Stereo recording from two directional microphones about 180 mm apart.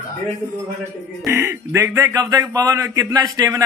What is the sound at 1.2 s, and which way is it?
A man's voice, 15° right (ahead or behind).